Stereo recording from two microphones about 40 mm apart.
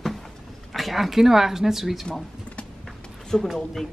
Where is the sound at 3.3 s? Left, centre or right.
Centre.